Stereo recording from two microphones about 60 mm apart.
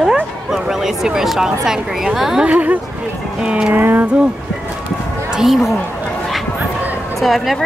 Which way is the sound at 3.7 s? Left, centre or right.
Right.